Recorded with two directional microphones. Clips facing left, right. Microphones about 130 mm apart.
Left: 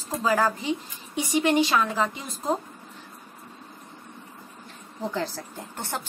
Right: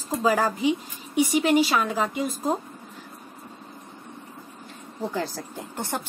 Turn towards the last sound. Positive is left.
turn(degrees=-15)  # may be behind; listen again after turning